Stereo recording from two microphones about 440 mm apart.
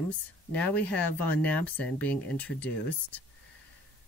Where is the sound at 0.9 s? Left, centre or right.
Left.